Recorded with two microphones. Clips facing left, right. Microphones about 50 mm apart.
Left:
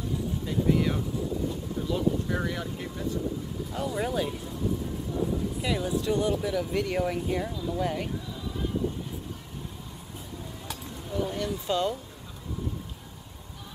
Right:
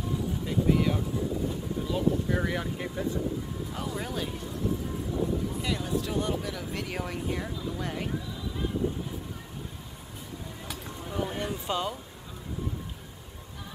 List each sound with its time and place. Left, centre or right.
0.5 s a sound: centre
1.9 s speech: centre
3.7 s speech: centre
5.6 s speech: centre
11.1 s speech: right